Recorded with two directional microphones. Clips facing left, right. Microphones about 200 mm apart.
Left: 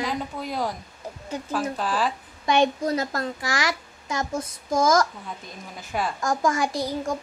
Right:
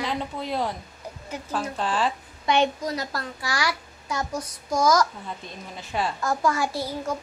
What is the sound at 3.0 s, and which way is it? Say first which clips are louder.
Speech: left 4 dB; 45° left (ahead or behind).